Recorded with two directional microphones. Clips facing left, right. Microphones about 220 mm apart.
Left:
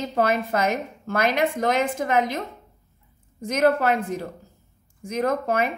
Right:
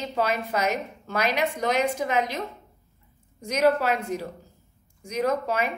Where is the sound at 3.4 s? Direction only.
50° left (ahead or behind).